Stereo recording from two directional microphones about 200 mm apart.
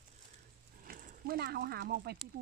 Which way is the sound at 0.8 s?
45° right (ahead or behind).